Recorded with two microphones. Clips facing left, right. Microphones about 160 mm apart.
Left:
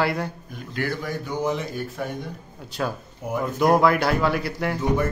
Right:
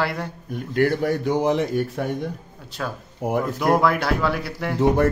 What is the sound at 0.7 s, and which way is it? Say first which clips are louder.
Speech: right 8 dB; 60° right (ahead or behind).